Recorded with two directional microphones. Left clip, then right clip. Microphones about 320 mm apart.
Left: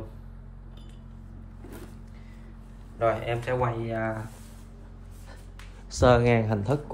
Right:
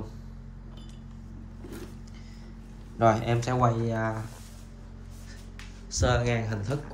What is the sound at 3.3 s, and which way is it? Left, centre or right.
Speech, centre.